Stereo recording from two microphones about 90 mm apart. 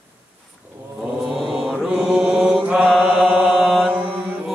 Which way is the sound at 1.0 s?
Centre (ahead or behind).